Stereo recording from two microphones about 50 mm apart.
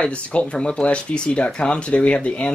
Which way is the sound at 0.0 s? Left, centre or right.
Left.